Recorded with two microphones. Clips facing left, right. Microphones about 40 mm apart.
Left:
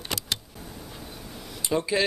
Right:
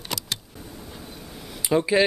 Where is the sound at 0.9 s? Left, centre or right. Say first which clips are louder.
Right 1 dB; centre.